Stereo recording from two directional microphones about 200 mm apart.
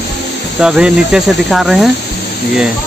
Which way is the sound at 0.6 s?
5° right (ahead or behind).